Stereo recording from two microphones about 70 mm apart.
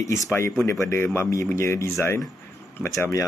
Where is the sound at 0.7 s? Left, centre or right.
Left.